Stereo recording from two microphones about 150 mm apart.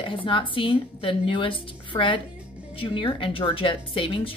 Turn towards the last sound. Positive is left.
turn(degrees=35)  # may be behind; listen again after turning